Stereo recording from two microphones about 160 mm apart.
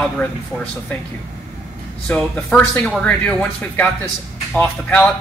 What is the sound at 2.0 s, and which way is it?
Speech, 10° left (ahead or behind).